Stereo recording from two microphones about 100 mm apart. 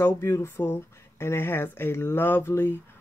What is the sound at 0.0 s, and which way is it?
Speech, 25° left (ahead or behind).